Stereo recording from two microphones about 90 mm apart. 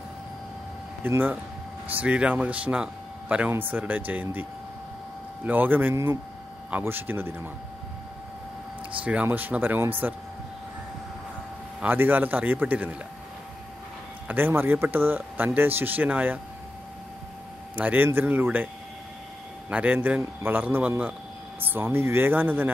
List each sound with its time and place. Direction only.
1.0 s speech: 20° right (ahead or behind)
9.0 s speech: 15° right (ahead or behind)
11.8 s speech: 20° right (ahead or behind)
14.2 s speech: 20° right (ahead or behind)
17.7 s speech: 20° right (ahead or behind)
19.7 s a man's voice: 15° right (ahead or behind)